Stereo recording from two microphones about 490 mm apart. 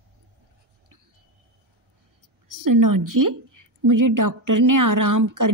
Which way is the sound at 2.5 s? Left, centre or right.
Right.